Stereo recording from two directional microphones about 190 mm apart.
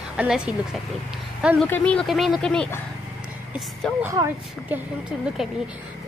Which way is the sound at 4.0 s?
15° right (ahead or behind).